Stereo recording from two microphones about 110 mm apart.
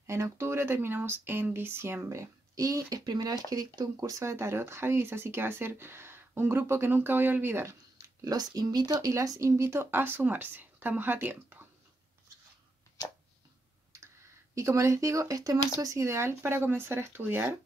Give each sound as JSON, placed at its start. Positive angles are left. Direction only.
{"t": 0.0, "sound": "speech", "side_deg": -25}
{"t": 8.2, "sound": "speech", "side_deg": -35}
{"t": 14.5, "sound": "speech", "side_deg": -25}